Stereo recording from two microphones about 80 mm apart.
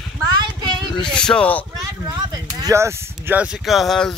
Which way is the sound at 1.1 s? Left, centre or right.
Centre.